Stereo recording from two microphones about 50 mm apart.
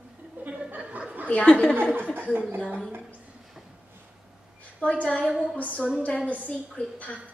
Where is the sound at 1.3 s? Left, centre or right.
Centre.